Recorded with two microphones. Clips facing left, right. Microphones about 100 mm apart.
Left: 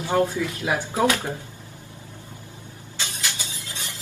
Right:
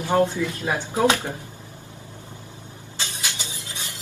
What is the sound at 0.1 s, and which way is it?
Speech, 25° right (ahead or behind).